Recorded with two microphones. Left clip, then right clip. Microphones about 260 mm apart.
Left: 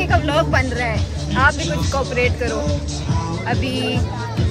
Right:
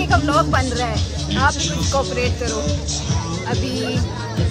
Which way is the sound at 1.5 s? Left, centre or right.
Centre.